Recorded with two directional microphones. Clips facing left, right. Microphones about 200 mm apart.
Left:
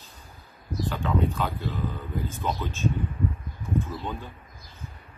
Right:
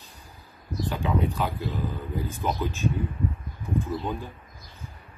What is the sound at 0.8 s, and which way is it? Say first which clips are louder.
Speech: even; 15° right (ahead or behind).